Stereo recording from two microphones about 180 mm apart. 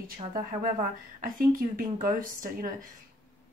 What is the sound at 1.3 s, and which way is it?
Speech, 50° right (ahead or behind).